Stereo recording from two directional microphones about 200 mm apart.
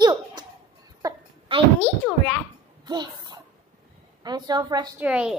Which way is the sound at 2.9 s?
20° right (ahead or behind).